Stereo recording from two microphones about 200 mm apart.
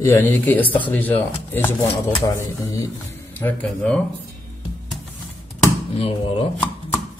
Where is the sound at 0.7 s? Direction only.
10° left (ahead or behind).